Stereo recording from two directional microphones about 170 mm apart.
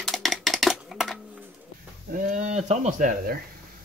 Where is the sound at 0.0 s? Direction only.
Centre (ahead or behind).